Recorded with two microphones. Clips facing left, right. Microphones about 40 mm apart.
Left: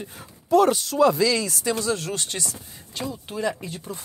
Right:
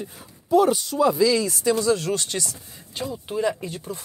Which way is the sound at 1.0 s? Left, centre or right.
Left.